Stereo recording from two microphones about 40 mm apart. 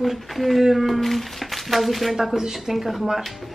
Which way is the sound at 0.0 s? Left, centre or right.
Centre.